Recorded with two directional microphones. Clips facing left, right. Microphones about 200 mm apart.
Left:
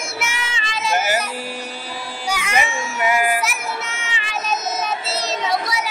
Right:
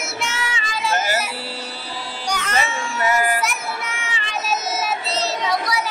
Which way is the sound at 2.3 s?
10° left (ahead or behind).